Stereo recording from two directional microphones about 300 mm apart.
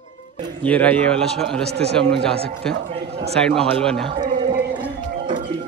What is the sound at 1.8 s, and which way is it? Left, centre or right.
Speech, right.